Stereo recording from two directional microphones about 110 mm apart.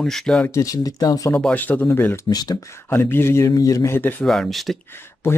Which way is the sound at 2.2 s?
35° left (ahead or behind).